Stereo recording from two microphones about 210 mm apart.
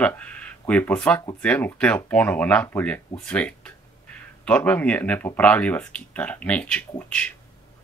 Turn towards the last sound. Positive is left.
turn(degrees=5)  # may be behind; listen again after turning